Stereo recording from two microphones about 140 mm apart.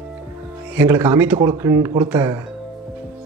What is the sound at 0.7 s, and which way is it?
A man's voice, 15° right (ahead or behind).